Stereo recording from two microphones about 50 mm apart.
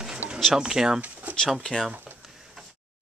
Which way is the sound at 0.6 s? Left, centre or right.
Centre.